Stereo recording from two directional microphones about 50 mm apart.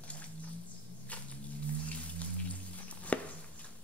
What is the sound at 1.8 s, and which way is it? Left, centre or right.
Rain on surface, left.